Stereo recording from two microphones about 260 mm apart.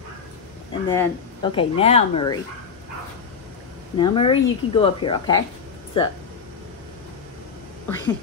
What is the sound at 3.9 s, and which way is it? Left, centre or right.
Speech, centre.